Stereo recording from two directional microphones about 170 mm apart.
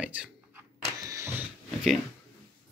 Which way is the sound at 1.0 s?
20° right (ahead or behind).